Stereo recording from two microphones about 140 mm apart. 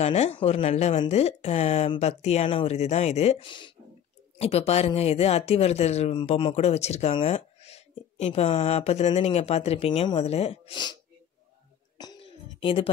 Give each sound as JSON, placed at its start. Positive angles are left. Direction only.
{"t": 0.0, "sound": "speech", "side_deg": 50}
{"t": 4.4, "sound": "speech", "side_deg": 45}
{"t": 12.0, "sound": "a sound", "side_deg": 35}